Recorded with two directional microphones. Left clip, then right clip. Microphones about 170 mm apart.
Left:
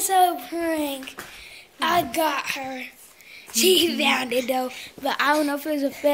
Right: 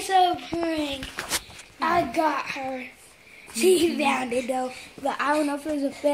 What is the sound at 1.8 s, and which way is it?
A child's voice, 10° right (ahead or behind).